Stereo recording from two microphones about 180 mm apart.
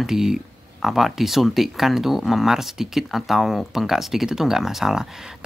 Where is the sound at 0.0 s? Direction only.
Centre (ahead or behind).